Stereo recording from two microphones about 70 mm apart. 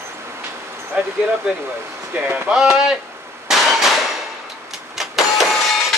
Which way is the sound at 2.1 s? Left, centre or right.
Right.